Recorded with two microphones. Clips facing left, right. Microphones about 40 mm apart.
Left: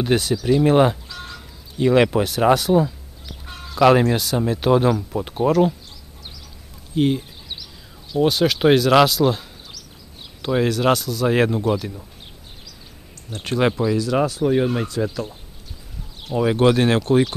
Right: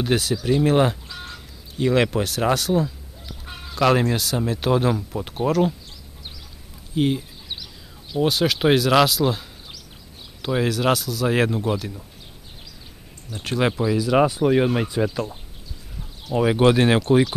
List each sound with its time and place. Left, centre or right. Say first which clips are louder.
0.0 s speech: left 2 dB; centre
1.0 s fowl: left 1 dB; centre
1.8 s speech: left 4 dB; centre
3.4 s chicken: left 2 dB; centre
3.8 s speech: left 4 dB; centre
7.0 s a sound: left 2 dB; centre
8.2 s speech: left 3 dB; centre
13.4 s speech: left 2 dB; centre
14.1 s speech: right 4 dB; centre
16.3 s speech: even; centre